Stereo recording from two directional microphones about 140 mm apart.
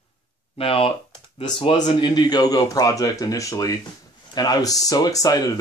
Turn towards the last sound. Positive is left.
turn(degrees=25)  # may be behind; listen again after turning